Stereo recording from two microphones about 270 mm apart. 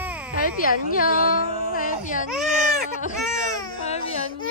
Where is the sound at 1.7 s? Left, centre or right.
Left.